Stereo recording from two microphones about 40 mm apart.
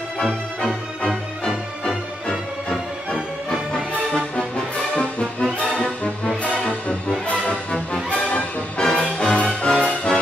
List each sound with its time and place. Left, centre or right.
0.2 s music: centre
3.7 s music: left
6.9 s music: left
8.1 s music: left
8.7 s music: centre